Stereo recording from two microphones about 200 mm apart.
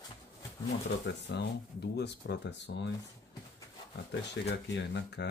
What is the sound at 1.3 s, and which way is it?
Speech, 60° left (ahead or behind).